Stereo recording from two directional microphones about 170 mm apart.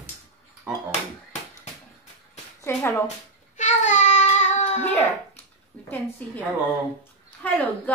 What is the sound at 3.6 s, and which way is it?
Child singing, 45° left (ahead or behind).